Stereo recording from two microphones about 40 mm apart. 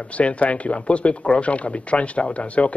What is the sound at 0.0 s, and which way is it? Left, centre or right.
Speech, left.